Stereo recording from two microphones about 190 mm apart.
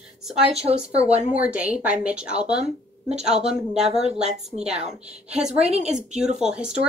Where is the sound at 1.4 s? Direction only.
5° right (ahead or behind).